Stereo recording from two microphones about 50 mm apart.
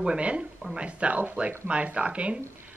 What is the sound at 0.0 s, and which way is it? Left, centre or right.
Speech, right.